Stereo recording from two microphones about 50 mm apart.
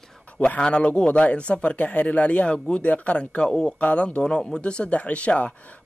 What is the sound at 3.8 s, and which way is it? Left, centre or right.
Speech, left.